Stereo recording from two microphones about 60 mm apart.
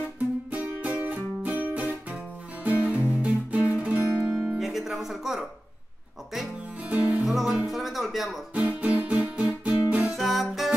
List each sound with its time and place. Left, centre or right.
0.5 s music: right
4.6 s music: centre
6.8 s music: right
7.2 s music: centre
8.5 s music: right
10.1 s music: centre